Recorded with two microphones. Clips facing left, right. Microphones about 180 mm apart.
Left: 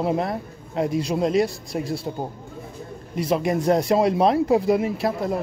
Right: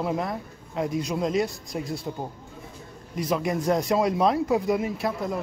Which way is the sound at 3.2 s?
30° left (ahead or behind).